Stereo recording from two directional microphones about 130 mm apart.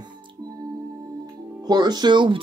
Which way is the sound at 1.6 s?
35° right (ahead or behind).